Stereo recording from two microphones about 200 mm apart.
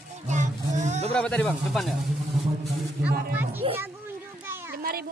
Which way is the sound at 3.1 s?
50° right (ahead or behind).